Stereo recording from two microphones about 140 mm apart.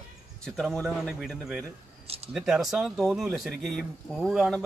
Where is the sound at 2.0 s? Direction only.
45° right (ahead or behind).